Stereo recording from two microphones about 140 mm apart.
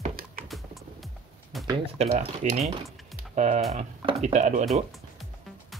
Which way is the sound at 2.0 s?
55° right (ahead or behind).